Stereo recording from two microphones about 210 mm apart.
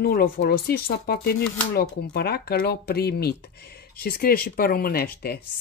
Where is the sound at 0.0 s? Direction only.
45° left (ahead or behind).